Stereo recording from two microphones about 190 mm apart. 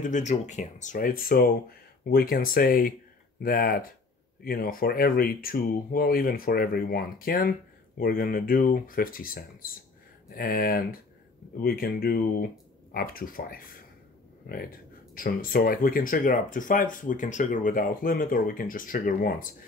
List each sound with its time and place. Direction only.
0.0 s speech: 40° left (ahead or behind)